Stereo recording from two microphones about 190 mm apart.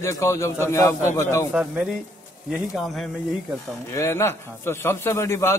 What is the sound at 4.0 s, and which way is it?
A man's voice, 15° left (ahead or behind).